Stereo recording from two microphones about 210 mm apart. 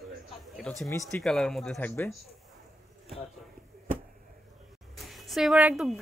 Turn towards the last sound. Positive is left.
turn(degrees=-5)  # may be behind; listen again after turning